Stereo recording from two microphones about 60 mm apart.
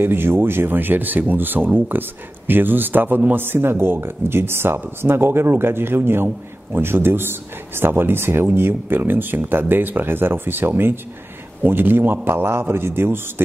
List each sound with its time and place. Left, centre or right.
0.0 s speech: right